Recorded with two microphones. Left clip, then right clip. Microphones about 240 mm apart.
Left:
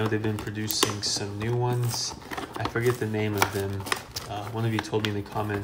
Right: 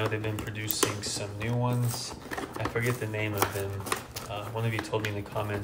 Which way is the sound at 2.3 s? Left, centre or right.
Centre.